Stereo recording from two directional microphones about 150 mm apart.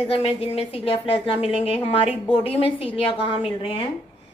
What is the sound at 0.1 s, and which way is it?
A woman's voice, 40° left (ahead or behind).